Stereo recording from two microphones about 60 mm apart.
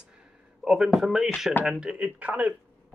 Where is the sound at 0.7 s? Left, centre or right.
Centre.